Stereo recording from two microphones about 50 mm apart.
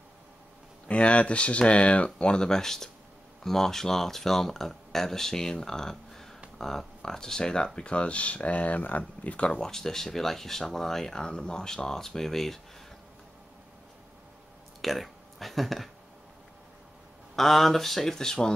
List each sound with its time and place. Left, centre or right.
0.8 s speech: left
9.5 s speech: centre
14.8 s speech: centre
17.4 s speech: centre